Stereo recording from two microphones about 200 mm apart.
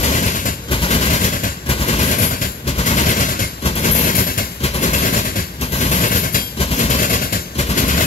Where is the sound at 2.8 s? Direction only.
40° left (ahead or behind).